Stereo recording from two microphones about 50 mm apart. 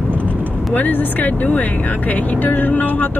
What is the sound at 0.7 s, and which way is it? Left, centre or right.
Speech, left.